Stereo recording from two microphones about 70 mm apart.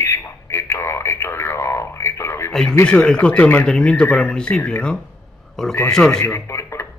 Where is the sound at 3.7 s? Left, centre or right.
Centre.